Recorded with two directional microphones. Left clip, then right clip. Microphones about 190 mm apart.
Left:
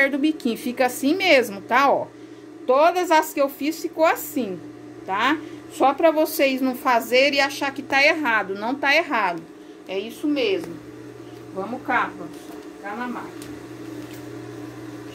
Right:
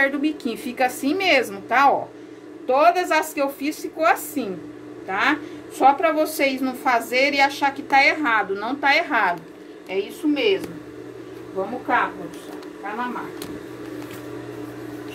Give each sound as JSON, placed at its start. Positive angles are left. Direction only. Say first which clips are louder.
{"t": 0.0, "sound": "a woman's voice", "louder": "left 1 dB", "side_deg": 45}
{"t": 9.8, "sound": "a woman's voice", "louder": "right 2 dB", "side_deg": 50}